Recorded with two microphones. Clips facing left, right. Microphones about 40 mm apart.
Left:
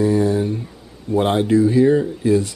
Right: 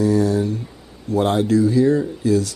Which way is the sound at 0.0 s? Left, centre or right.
Left.